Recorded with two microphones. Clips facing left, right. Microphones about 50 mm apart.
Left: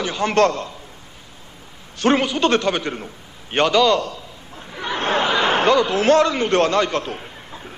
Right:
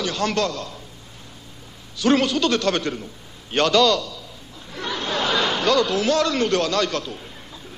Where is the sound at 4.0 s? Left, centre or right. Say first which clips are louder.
Left 5 dB; left.